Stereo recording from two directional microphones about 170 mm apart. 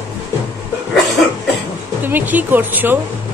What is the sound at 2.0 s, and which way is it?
Speech, 10° right (ahead or behind).